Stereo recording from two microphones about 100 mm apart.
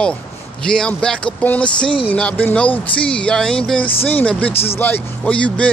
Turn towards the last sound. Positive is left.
turn(degrees=15)  # may be behind; listen again after turning